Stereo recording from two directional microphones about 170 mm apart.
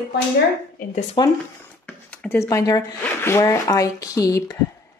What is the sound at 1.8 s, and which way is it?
A woman's voice, 10° left (ahead or behind).